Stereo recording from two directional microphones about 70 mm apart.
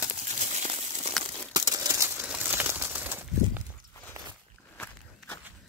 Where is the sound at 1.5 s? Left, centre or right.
Right.